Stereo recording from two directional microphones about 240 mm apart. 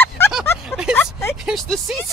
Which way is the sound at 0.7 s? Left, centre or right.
Centre.